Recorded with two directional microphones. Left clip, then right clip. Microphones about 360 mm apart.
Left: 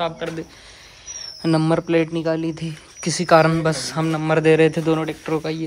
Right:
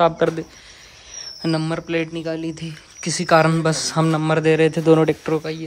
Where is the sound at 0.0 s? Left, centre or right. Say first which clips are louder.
Right 8 dB; centre.